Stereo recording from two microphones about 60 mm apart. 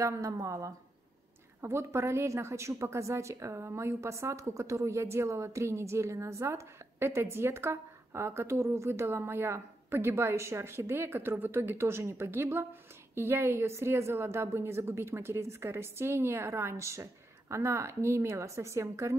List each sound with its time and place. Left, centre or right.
0.0 s a woman's voice: right
1.6 s a woman's voice: right